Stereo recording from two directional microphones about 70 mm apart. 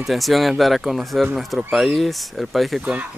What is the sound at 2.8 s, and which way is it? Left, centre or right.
Speech, right.